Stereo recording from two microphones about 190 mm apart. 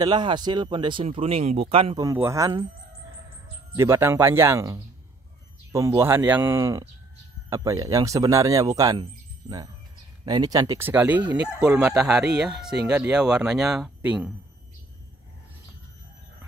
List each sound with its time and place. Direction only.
0.0 s speech: 25° right (ahead or behind)
2.0 s speech: 15° right (ahead or behind)
3.7 s speech: 15° right (ahead or behind)
10.2 s speech: 20° right (ahead or behind)